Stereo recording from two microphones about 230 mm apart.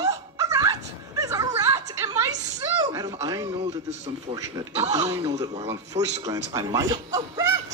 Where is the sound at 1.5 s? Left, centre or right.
Centre.